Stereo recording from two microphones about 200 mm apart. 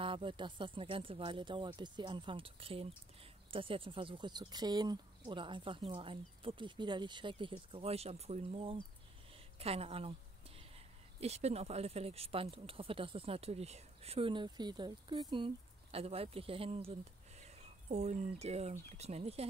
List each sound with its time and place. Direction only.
0.0 s speech: 25° right (ahead or behind)
11.1 s speech: 30° right (ahead or behind)